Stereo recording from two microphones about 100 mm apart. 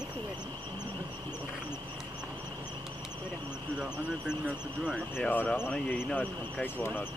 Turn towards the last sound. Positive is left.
turn(degrees=20)  # may be behind; listen again after turning